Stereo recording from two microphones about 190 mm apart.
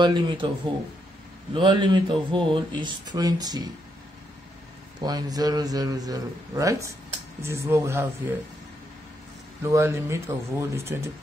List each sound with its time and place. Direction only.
0.0 s speech: 25° right (ahead or behind)
1.5 s speech: 25° right (ahead or behind)
5.0 s speech: 20° right (ahead or behind)
9.6 s speech: 15° right (ahead or behind)